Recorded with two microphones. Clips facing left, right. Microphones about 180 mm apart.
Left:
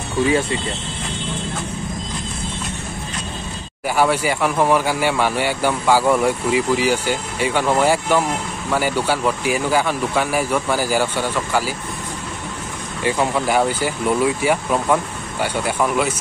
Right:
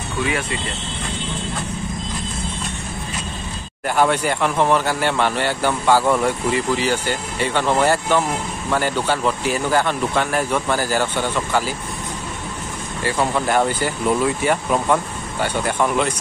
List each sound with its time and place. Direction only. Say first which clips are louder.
0.3 s speech: left 7 dB; 30° left (ahead or behind)
3.8 s speech: even; 5° left (ahead or behind)
13.0 s speech: left 1 dB; 10° left (ahead or behind)